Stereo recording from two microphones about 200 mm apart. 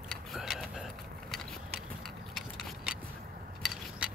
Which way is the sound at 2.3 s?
Centre (ahead or behind).